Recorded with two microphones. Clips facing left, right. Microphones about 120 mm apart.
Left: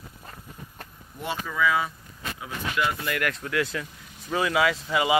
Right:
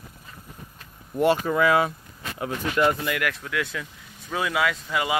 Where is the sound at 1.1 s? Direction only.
65° right (ahead or behind).